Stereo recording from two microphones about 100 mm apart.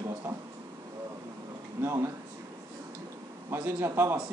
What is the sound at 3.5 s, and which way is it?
Speech, 25° right (ahead or behind).